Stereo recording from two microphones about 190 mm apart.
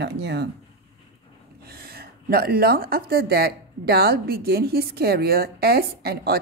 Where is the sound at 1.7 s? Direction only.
55° right (ahead or behind).